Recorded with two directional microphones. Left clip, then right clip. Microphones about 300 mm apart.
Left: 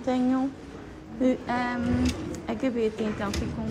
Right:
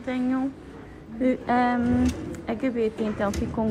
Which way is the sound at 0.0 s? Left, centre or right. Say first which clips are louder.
Left 1 dB; centre.